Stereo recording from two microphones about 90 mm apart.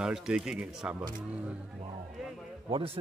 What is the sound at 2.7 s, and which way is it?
Speech, 90° right.